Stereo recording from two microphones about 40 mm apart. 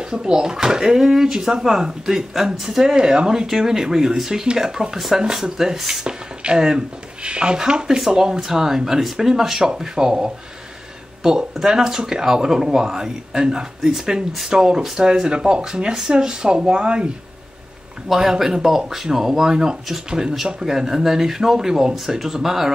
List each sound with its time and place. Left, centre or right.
0.0 s speech: right
4.9 s speech: centre
11.7 s speech: centre
13.7 s speech: centre; by 17.1 s right
18.0 s speech: centre